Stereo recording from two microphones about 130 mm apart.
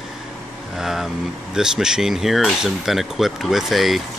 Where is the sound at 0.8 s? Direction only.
5° right (ahead or behind).